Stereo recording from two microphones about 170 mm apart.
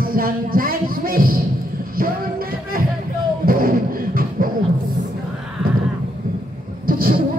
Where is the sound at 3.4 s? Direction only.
55° right (ahead or behind).